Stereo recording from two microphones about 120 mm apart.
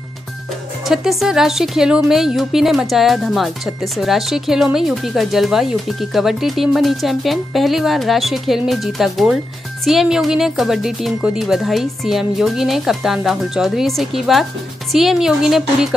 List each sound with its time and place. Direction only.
0.8 s speech: 5° right (ahead or behind)